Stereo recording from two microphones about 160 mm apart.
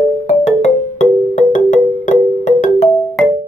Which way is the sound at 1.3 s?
50° left (ahead or behind).